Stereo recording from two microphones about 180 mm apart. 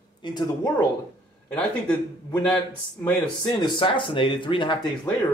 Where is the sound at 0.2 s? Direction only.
25° left (ahead or behind).